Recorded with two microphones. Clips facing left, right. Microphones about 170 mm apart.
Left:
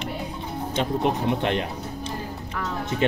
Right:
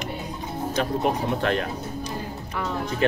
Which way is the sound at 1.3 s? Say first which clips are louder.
Even; 20° left (ahead or behind).